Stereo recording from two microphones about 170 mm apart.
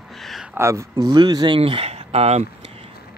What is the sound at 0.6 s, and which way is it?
Speech, 15° right (ahead or behind).